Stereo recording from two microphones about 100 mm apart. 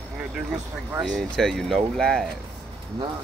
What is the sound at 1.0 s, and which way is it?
Speech, centre (ahead or behind).